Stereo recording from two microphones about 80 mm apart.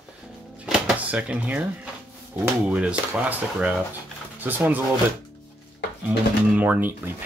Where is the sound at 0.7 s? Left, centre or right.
Centre.